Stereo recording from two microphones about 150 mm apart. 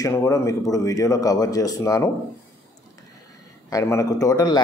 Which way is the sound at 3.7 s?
20° left (ahead or behind).